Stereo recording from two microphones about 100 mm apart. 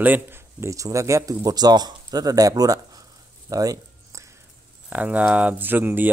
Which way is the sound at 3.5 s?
35° right (ahead or behind).